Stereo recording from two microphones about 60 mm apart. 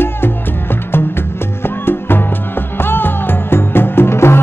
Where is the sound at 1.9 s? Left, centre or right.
Left.